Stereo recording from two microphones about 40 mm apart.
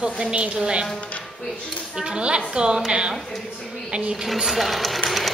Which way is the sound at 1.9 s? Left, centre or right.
Right.